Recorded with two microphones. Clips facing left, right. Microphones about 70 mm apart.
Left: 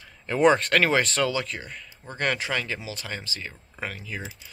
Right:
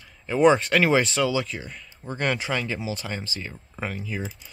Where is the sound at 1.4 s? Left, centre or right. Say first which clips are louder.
Right 1 dB; centre.